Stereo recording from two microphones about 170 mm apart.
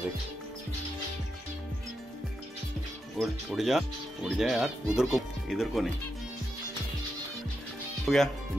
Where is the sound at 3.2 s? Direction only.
Centre (ahead or behind).